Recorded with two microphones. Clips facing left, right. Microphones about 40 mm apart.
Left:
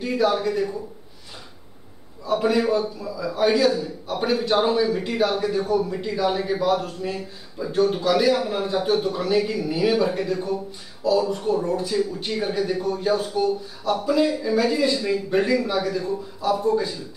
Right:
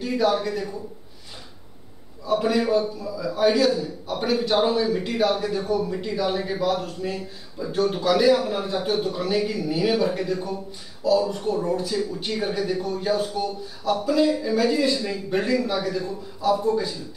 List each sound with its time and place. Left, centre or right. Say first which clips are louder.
0.0 s a man's voice: left 1 dB; centre
2.2 s a man's voice: left 1 dB; centre